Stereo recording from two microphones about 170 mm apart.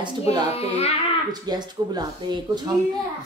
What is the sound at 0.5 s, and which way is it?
Child singing, 35° left (ahead or behind).